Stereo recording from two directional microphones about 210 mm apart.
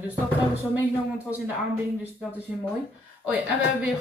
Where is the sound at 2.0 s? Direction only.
5° right (ahead or behind).